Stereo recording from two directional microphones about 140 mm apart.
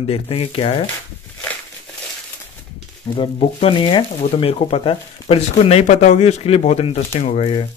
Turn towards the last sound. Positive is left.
turn(degrees=45)  # may be behind; listen again after turning